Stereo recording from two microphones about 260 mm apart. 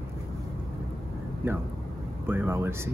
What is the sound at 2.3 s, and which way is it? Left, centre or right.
Speech, centre.